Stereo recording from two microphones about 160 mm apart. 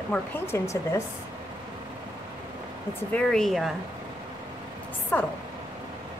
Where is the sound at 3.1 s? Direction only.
5° left (ahead or behind).